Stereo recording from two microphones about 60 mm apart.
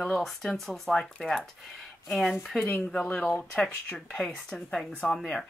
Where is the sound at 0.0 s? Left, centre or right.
Centre.